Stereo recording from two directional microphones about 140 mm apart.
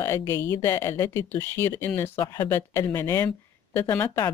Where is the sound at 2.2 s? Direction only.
30° left (ahead or behind).